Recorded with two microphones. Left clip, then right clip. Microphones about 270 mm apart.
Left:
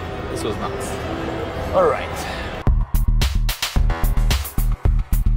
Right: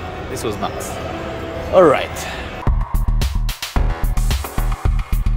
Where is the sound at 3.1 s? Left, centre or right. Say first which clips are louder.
Left 7 dB; centre.